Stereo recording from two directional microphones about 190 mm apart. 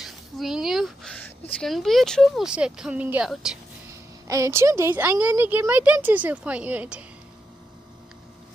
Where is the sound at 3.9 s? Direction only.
15° right (ahead or behind).